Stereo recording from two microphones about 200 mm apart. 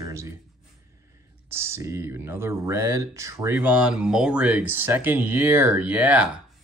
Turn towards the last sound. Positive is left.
turn(degrees=-5)  # may be behind; listen again after turning